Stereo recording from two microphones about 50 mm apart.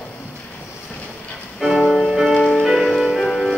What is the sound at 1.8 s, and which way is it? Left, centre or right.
Music, centre.